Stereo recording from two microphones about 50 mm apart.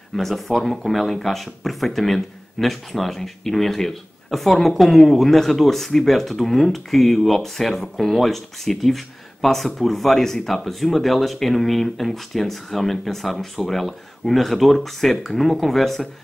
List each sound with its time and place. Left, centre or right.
0.1 s speech: centre